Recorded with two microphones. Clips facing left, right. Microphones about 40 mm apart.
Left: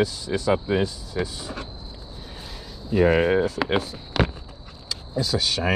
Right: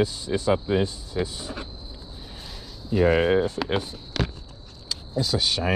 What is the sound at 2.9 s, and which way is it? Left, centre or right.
Speech, centre.